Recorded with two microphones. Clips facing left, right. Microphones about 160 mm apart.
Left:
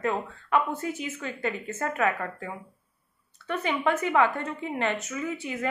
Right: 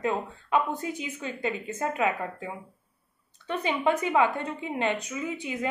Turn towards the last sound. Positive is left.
turn(degrees=-15)  # may be behind; listen again after turning